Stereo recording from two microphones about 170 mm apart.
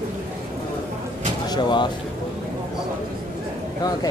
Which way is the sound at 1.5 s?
25° left (ahead or behind).